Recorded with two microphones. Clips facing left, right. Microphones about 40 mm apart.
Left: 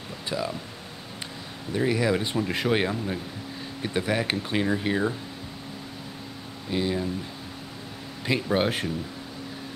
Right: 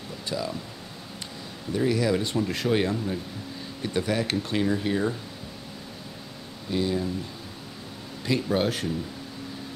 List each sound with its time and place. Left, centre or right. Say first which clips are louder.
0.3 s speech: left 1 dB; centre
1.7 s speech: even; centre
6.7 s speech: even; centre
8.3 s speech: even; left